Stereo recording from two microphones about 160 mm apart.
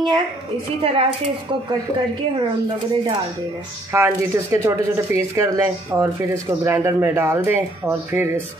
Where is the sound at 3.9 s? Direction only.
15° right (ahead or behind).